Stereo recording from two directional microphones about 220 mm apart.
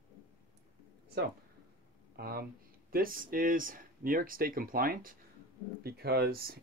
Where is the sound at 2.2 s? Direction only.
45° right (ahead or behind).